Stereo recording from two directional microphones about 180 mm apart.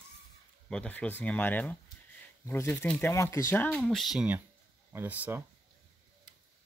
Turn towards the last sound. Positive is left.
turn(degrees=-10)  # may be behind; listen again after turning